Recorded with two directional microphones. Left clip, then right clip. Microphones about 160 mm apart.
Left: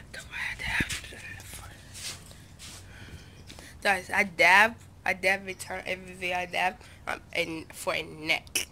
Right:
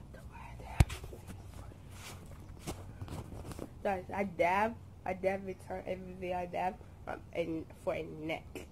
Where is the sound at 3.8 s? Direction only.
20° left (ahead or behind).